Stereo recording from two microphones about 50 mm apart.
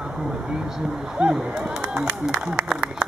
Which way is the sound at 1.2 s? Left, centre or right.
Centre.